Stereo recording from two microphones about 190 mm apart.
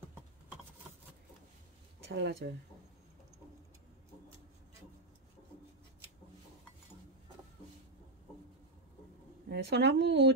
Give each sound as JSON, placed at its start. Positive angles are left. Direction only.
{"t": 2.0, "sound": "speech", "side_deg": -65}
{"t": 9.5, "sound": "speech", "side_deg": -65}